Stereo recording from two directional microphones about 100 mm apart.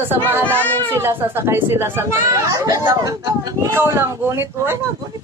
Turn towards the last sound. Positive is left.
turn(degrees=-25)  # may be behind; listen again after turning